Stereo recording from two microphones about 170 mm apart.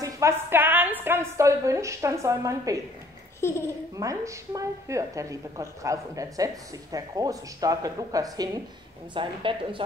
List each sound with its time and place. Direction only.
0.0 s a woman's voice: 15° right (ahead or behind)
3.3 s speech: 15° left (ahead or behind)
3.9 s a woman's voice: 20° right (ahead or behind)